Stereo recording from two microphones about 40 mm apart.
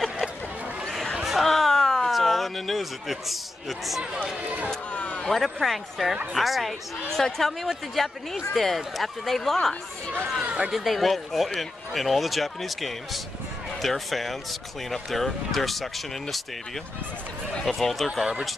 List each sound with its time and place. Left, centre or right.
1.1 s a sound: centre
4.2 s speech: right
4.9 s speech: left
5.3 s speech: centre
10.7 s speech: centre
17.6 s speech: centre